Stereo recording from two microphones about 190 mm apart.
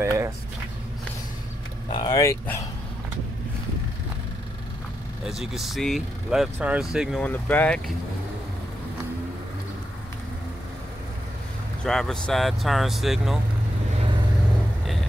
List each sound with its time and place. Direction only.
0.0 s a sound: 15° right (ahead or behind)
1.9 s speech: 25° left (ahead or behind)
5.2 s speech: centre (ahead or behind)
7.2 s speech: 10° left (ahead or behind)
11.8 s speech: 5° left (ahead or behind)